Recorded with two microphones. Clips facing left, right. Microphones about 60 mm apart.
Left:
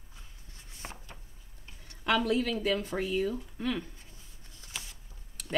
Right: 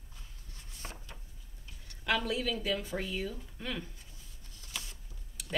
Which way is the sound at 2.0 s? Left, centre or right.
Left.